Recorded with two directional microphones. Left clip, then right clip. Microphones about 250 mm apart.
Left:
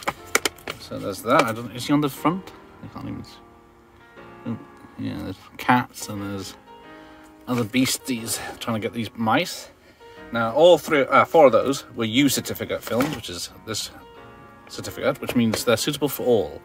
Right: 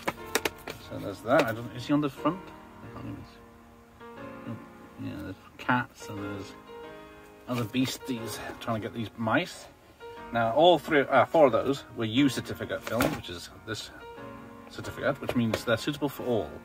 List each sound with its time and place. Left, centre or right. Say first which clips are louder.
0.8 s speech: left 6 dB; left
5.0 s speech: left 7 dB; left